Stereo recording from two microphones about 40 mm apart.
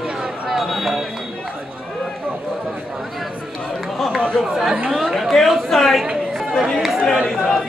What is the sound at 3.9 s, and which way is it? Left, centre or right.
Chatter, centre.